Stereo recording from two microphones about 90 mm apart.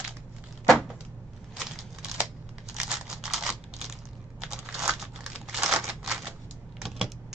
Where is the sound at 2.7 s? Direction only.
5° right (ahead or behind).